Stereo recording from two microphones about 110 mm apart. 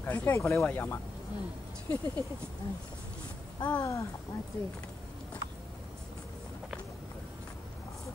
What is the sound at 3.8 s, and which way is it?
Speech, 30° left (ahead or behind).